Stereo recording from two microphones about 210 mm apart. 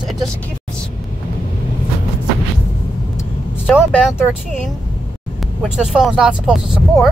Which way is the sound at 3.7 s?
5° left (ahead or behind).